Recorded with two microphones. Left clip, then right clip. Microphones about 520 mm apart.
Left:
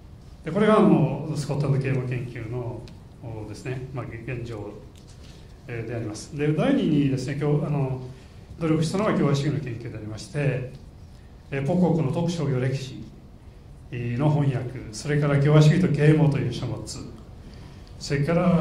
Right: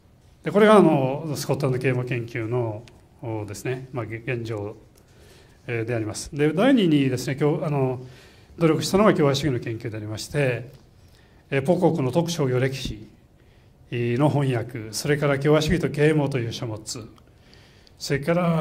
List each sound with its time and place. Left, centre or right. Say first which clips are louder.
0.4 s a man's voice: right 4 dB; right
5.7 s a man's voice: right 6 dB; right